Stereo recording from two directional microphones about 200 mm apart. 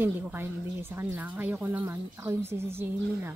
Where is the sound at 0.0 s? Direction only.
10° right (ahead or behind).